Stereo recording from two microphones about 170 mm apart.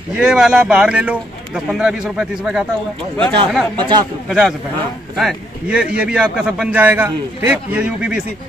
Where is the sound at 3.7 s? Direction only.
25° right (ahead or behind).